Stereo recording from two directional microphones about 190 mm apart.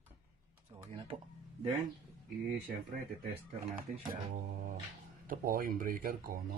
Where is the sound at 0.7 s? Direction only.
30° right (ahead or behind).